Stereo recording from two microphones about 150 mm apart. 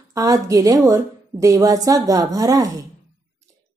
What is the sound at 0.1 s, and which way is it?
Speech, 25° right (ahead or behind).